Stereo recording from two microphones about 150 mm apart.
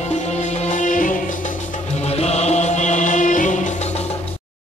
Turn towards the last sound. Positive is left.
turn(degrees=50)  # may be behind; listen again after turning